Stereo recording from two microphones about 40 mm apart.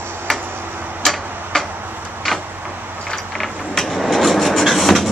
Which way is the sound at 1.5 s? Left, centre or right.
Centre.